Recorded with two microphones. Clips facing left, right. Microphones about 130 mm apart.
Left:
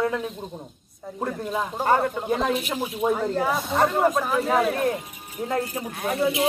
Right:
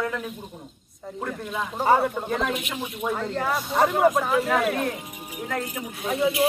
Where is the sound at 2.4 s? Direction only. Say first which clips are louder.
Left 3 dB; 35° left (ahead or behind).